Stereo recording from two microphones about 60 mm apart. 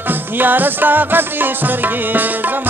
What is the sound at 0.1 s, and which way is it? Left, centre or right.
Music, right.